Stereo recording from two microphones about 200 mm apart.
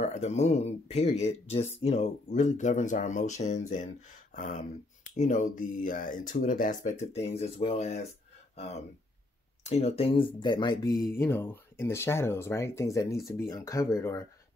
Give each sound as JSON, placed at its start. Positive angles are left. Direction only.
{"t": 0.0, "sound": "speech", "side_deg": 35}